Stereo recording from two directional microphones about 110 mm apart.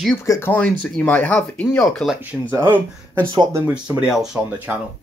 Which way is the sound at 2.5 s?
20° right (ahead or behind).